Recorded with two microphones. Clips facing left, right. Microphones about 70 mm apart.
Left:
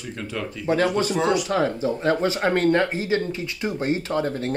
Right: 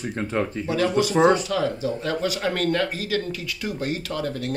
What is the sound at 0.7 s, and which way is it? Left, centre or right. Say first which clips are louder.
Speech: left 5 dB; left.